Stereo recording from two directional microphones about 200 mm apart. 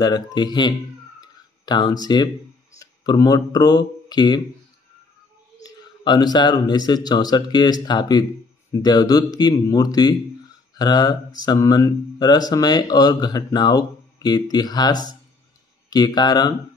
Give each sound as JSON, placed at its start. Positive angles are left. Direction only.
{"t": 0.0, "sound": "speech", "side_deg": 20}
{"t": 1.2, "sound": "a sound", "side_deg": 20}
{"t": 2.8, "sound": "speech", "side_deg": 20}
{"t": 5.6, "sound": "speech", "side_deg": 20}